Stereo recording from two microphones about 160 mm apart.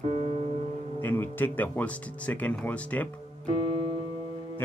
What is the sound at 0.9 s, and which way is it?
Speech, 10° left (ahead or behind).